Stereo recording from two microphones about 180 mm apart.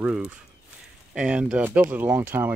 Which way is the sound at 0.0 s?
5° right (ahead or behind).